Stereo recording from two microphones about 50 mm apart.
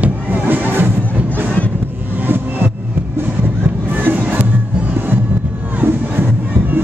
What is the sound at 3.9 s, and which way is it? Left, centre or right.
Music, right.